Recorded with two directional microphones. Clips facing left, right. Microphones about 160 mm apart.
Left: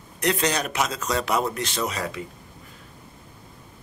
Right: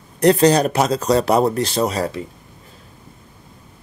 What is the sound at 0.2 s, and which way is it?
Speech, 35° right (ahead or behind).